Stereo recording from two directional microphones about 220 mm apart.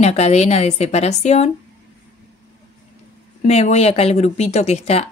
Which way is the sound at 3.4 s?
30° left (ahead or behind).